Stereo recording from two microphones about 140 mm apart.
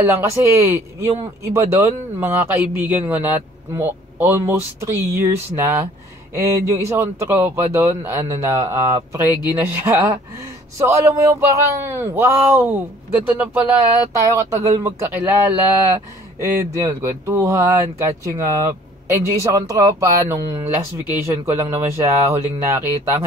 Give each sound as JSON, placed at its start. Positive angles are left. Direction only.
{"t": 0.2, "sound": "speech", "side_deg": -20}
{"t": 14.1, "sound": "speech", "side_deg": -25}
{"t": 21.5, "sound": "speech", "side_deg": -20}